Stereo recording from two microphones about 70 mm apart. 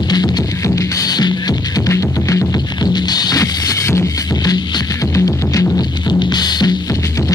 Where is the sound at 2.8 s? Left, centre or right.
Left.